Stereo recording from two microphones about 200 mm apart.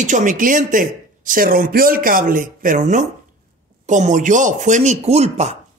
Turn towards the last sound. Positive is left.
turn(degrees=-35)  # may be behind; listen again after turning